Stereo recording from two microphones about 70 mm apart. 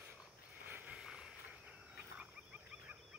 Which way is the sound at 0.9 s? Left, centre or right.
Centre.